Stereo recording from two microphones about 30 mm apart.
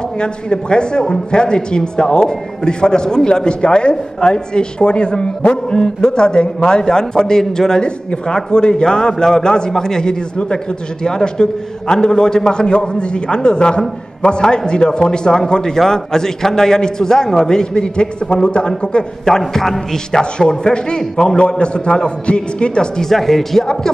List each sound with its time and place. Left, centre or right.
0.2 s a man's voice: left
6.8 s a man's voice: left
7.8 s a man's voice: left
19.2 s a man's voice: centre; by 22.7 s left
23.0 s speech: centre